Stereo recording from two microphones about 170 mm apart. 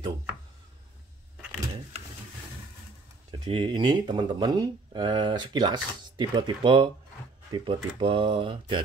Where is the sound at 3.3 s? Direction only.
25° right (ahead or behind).